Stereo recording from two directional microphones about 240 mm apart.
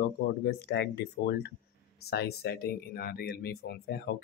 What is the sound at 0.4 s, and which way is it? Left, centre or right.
Speech, left.